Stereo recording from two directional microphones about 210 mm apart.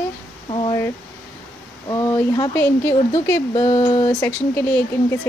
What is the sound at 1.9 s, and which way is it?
Speech, 15° left (ahead or behind).